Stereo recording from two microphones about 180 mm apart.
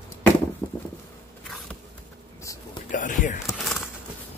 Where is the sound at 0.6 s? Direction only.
5° left (ahead or behind).